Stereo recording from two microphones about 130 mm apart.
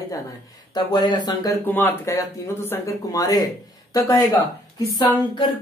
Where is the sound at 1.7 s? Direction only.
15° left (ahead or behind).